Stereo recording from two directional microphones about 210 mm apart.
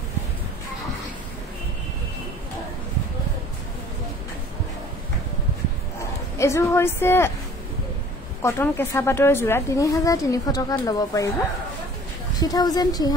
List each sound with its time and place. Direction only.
6.3 s a woman's voice: 15° left (ahead or behind)
8.4 s a woman's voice: 10° left (ahead or behind)
12.4 s speech: 20° left (ahead or behind)